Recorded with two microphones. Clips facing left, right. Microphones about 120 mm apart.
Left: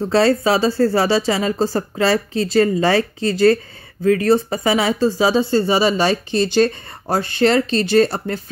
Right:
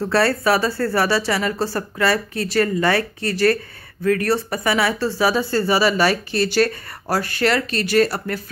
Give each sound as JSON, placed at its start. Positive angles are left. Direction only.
{"t": 0.1, "sound": "speech", "side_deg": 20}